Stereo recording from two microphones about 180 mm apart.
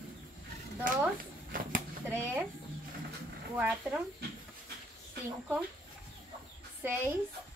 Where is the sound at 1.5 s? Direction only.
50° right (ahead or behind).